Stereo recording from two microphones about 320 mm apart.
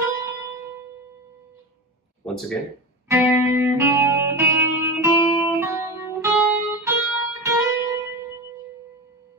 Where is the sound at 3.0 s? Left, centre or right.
Centre.